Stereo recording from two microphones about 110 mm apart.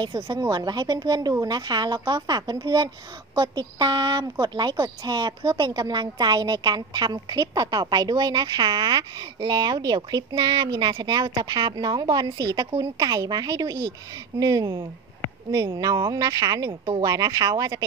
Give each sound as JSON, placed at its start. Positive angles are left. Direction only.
{"t": 0.0, "sound": "a woman's voice", "side_deg": -35}